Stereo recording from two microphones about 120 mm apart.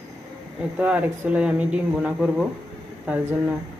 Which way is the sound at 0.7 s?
10° right (ahead or behind).